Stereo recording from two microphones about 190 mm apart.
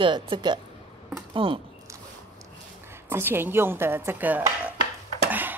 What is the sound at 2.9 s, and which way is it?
Dishes, 10° right (ahead or behind).